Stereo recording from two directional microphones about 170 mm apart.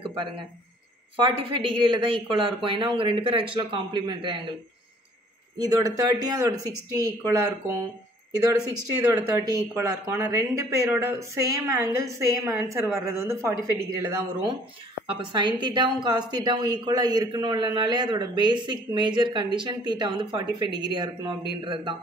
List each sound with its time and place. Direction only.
0.0 s a sound: 30° right (ahead or behind)
1.1 s speech: 30° right (ahead or behind)
5.6 s a man's voice: 25° right (ahead or behind)
15.0 s a man's voice: 30° right (ahead or behind)